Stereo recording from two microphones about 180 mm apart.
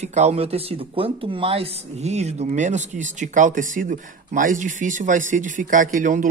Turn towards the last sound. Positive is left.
turn(degrees=-45)  # may be behind; listen again after turning